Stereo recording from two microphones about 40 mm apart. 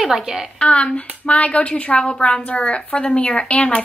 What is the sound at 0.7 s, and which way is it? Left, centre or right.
A woman's voice, left.